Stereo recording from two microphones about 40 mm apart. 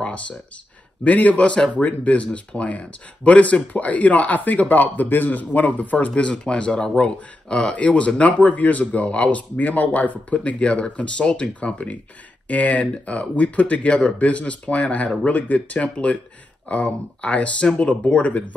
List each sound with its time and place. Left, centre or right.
0.0 s a sound: left
1.0 s speech: left
7.7 s speech: left